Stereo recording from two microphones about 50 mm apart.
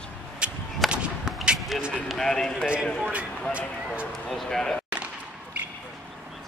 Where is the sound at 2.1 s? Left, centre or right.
Centre.